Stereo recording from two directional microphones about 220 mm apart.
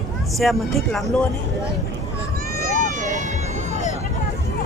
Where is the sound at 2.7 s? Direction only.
35° right (ahead or behind).